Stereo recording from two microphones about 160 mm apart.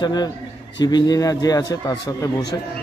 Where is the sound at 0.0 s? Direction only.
25° left (ahead or behind).